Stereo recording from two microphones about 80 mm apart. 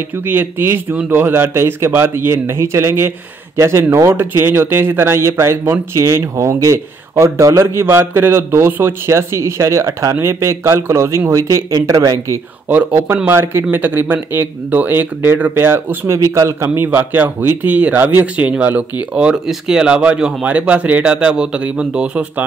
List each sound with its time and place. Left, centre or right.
0.3 s speech: right
12.6 s speech: right